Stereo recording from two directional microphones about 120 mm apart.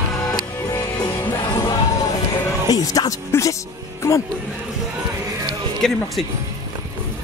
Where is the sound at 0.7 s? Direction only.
35° left (ahead or behind).